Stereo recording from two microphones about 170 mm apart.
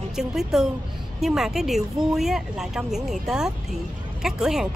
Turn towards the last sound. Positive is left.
turn(degrees=-5)  # may be behind; listen again after turning